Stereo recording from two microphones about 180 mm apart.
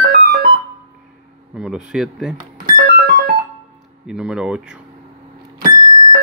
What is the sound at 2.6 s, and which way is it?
Music, 55° right (ahead or behind).